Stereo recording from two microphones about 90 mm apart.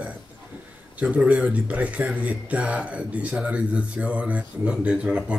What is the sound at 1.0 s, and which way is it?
Speech, 15° right (ahead or behind).